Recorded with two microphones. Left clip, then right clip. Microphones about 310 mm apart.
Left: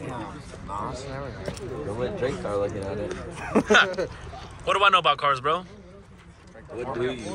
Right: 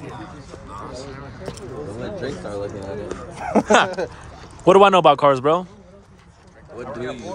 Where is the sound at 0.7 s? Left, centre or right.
Centre.